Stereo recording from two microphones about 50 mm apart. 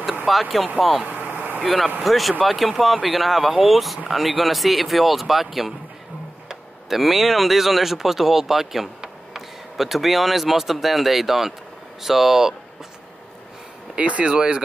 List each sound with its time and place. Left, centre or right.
0.3 s speech: centre
1.0 s vehicle: right
1.6 s speech: centre
13.9 s speech: right